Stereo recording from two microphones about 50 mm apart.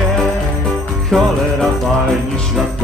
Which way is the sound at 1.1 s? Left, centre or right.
Centre.